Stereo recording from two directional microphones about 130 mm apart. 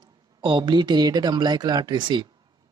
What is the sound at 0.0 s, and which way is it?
Speech, 40° right (ahead or behind).